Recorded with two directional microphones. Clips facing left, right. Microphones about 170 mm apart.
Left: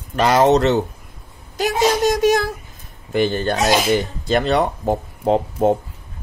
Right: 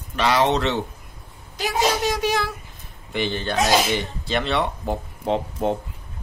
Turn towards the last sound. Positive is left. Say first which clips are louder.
# left 6 dB
turn(degrees=40)  # may be behind; listen again after turning